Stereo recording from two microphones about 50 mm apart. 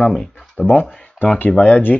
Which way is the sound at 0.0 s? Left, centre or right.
Centre.